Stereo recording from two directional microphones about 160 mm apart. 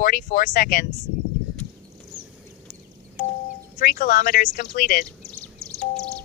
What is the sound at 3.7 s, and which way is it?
Speech, 60° left (ahead or behind).